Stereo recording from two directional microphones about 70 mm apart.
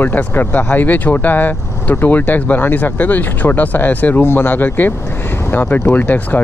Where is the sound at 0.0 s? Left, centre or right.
Left.